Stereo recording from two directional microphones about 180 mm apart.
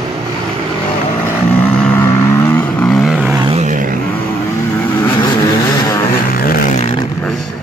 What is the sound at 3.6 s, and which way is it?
Vehicle, 45° right (ahead or behind).